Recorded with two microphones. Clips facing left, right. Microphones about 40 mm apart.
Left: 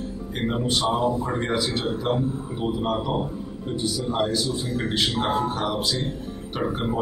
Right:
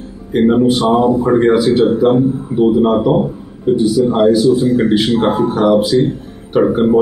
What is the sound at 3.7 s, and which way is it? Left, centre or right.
Speech, centre.